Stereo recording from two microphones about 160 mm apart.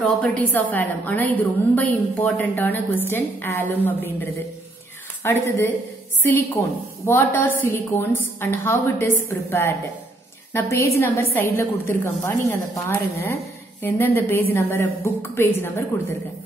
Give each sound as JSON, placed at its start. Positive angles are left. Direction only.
{"t": 0.0, "sound": "a woman's voice", "side_deg": 5}
{"t": 5.2, "sound": "a woman's voice", "side_deg": 15}